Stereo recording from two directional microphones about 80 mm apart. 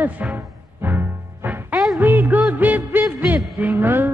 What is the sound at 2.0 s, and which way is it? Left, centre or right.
Music, right.